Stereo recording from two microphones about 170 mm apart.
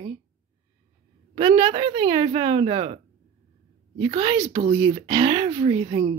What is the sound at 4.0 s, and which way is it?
Speech, 30° right (ahead or behind).